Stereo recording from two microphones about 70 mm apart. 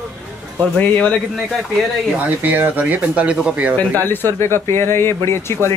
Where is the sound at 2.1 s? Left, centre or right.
Right.